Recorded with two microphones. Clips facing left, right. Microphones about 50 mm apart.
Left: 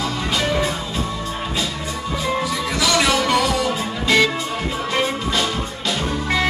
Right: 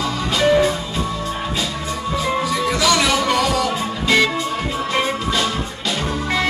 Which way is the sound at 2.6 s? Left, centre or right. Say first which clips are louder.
Right 2 dB; centre.